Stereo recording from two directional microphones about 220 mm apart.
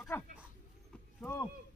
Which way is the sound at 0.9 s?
10° left (ahead or behind).